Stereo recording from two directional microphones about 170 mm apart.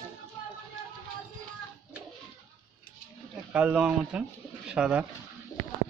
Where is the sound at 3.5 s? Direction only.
5° right (ahead or behind).